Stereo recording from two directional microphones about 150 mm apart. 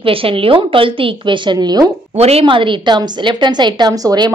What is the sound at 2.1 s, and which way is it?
A woman's voice, 45° right (ahead or behind).